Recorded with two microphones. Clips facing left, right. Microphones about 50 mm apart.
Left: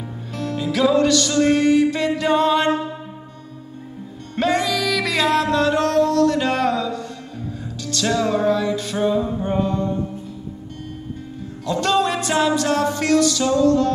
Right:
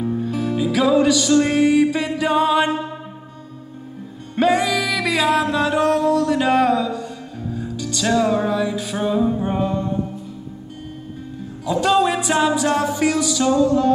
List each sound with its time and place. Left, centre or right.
0.0 s music: centre
4.4 s music: centre
11.6 s music: centre